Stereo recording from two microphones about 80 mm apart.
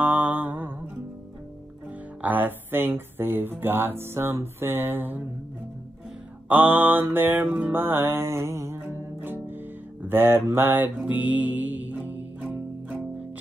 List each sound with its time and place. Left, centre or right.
0.0 s music: right
2.2 s speech: right
6.5 s mantra: right
10.0 s music: right